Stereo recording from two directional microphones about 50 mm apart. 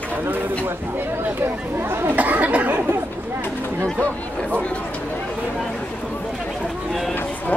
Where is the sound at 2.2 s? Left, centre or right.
Right.